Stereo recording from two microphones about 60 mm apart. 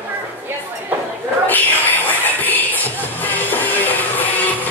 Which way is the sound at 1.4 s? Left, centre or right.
Left.